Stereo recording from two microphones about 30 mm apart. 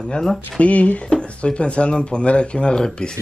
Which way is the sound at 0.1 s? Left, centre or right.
Centre.